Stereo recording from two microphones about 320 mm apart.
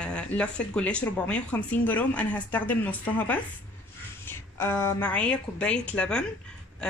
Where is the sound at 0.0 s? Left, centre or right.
Centre.